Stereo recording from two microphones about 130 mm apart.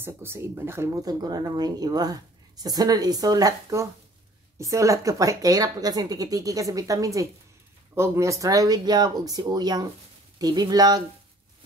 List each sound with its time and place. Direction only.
0.0 s speech: 20° right (ahead or behind)